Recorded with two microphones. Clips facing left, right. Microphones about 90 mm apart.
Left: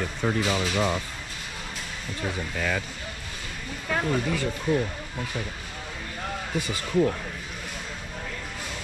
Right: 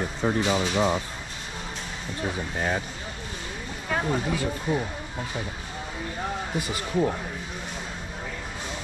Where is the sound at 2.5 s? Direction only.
35° right (ahead or behind).